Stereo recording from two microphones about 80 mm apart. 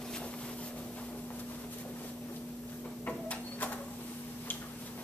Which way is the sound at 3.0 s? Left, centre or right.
Centre.